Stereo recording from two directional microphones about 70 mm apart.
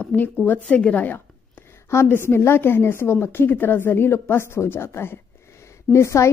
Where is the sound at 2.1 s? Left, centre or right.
Left.